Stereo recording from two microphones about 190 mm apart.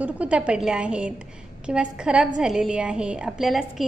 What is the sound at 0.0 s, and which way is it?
A woman's voice, 5° right (ahead or behind).